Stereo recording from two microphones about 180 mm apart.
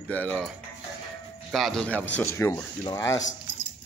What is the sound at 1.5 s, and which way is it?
Speech, centre (ahead or behind).